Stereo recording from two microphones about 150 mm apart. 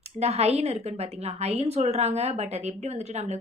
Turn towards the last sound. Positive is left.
turn(degrees=-50)  # may be behind; listen again after turning